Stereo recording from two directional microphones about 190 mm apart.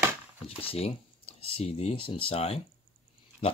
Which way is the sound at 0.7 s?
30° left (ahead or behind).